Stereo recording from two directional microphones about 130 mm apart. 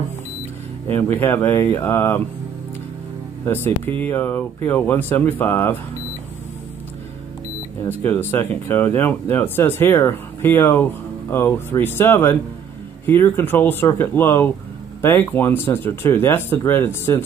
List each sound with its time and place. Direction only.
0.8 s speech: 15° left (ahead or behind)
3.4 s speech: 15° left (ahead or behind)
8.0 s speech: 15° left (ahead or behind)